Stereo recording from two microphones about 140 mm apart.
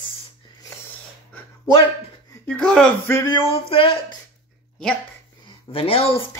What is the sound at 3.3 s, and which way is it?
Speech, 40° left (ahead or behind).